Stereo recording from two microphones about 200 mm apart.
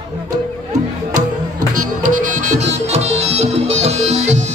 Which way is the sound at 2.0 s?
40° right (ahead or behind).